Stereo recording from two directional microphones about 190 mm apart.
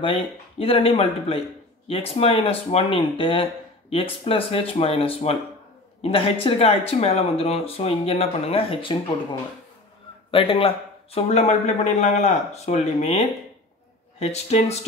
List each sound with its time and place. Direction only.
0.0 s a man's voice: 30° left (ahead or behind)
10.3 s a man's voice: 30° left (ahead or behind)